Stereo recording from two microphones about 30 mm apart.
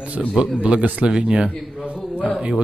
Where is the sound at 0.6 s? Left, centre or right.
Right.